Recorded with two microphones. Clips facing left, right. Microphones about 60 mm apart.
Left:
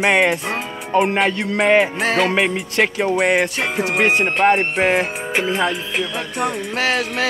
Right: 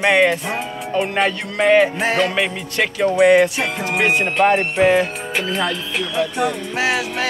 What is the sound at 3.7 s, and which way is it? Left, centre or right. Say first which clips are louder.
Music: left 4 dB; centre.